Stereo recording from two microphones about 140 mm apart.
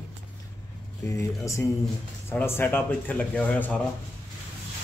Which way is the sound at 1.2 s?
20° left (ahead or behind).